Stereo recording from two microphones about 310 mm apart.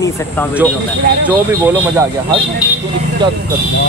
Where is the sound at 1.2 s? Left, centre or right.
Centre.